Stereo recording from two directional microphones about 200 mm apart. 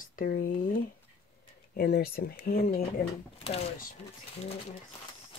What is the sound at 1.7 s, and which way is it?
Speech, 50° left (ahead or behind).